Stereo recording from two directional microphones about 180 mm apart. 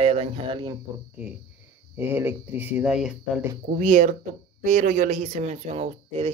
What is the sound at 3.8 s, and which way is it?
Speech, 40° right (ahead or behind).